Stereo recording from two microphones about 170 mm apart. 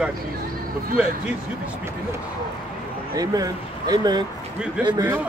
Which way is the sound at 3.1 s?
20° right (ahead or behind).